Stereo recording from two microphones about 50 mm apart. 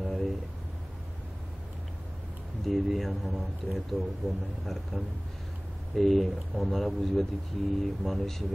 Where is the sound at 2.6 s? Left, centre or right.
Centre.